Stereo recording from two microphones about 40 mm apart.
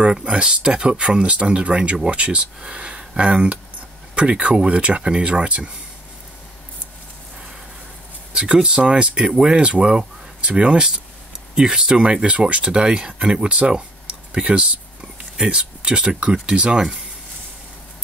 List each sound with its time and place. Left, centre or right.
0.0 s speech: right
8.3 s speech: right